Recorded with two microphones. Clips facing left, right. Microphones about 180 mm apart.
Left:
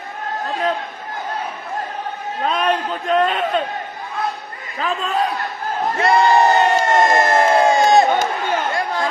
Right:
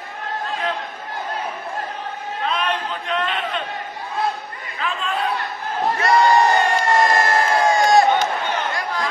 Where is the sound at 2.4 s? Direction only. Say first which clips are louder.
Left 5 dB; 45° left (ahead or behind).